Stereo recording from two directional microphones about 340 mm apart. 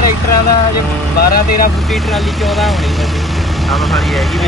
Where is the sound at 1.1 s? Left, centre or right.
Left.